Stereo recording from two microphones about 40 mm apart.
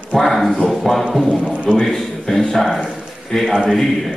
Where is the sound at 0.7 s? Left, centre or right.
Centre.